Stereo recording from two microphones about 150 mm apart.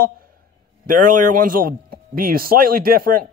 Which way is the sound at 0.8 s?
60° right (ahead or behind).